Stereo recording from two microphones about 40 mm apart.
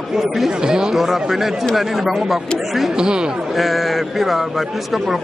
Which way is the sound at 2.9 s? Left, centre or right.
Centre.